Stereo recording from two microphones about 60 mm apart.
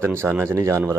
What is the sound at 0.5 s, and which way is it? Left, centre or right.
Speech, right.